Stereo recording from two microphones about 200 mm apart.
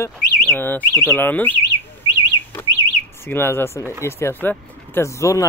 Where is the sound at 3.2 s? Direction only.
10° left (ahead or behind).